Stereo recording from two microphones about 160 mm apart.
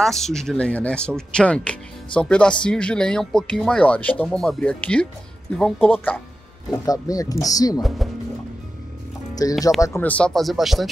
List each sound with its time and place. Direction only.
0.0 s speech: centre (ahead or behind)
6.9 s speech: 20° left (ahead or behind)
8.0 s music: centre (ahead or behind)
9.3 s speech: 25° left (ahead or behind); by 10.9 s centre (ahead or behind)